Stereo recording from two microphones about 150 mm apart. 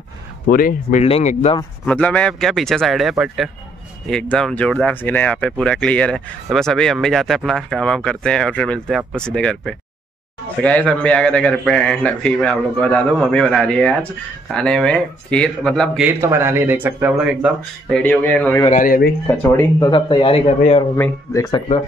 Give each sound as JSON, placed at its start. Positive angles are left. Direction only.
{"t": 0.5, "sound": "speech", "side_deg": 70}
{"t": 1.0, "sound": "a man's voice", "side_deg": 45}
{"t": 1.9, "sound": "a man's voice", "side_deg": 10}
{"t": 16.0, "sound": "speech", "side_deg": -15}
{"t": 18.7, "sound": "speech", "side_deg": 70}
{"t": 19.2, "sound": "speech", "side_deg": 20}
{"t": 19.9, "sound": "a man's voice", "side_deg": 35}
{"t": 20.9, "sound": "speech", "side_deg": 20}